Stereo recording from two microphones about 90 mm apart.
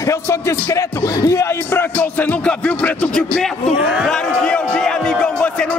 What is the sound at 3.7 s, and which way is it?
Speech, 15° right (ahead or behind).